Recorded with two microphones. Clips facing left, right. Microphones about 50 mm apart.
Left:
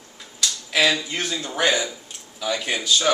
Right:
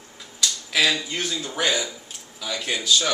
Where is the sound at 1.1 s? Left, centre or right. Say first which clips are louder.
Left 2 dB; centre.